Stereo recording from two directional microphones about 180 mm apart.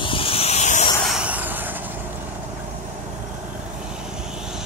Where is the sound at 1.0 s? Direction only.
5° right (ahead or behind).